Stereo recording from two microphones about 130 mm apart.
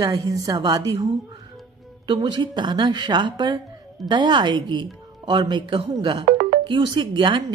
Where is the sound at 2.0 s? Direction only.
35° right (ahead or behind).